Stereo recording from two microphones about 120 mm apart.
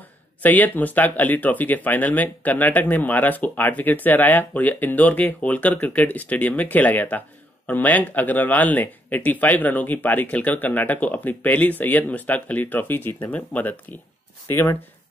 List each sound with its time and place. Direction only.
0.4 s speech: 15° left (ahead or behind)